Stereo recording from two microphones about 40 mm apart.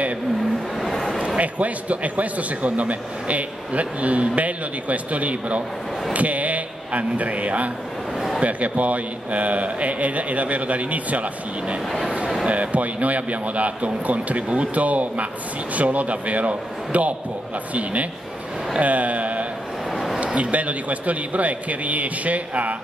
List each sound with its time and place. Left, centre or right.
0.7 s a sound: centre
1.2 s a man's voice: right
12.4 s a man's voice: right
18.8 s a man's voice: right